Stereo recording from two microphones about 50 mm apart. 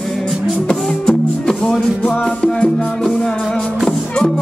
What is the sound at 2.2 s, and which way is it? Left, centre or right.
Music, left.